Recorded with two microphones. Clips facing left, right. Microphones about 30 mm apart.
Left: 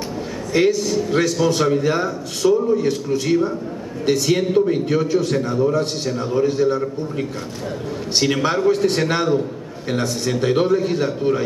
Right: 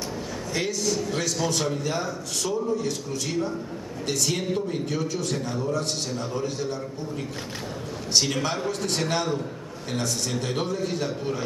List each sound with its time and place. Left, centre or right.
0.5 s a man's voice: left